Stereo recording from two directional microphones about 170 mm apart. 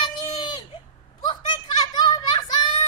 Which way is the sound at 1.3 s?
30° left (ahead or behind).